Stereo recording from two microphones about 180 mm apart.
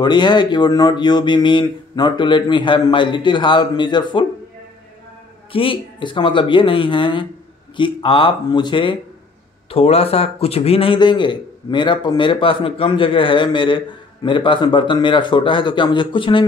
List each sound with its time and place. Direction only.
0.0 s a man's voice: 25° left (ahead or behind)
5.5 s a man's voice: 30° left (ahead or behind)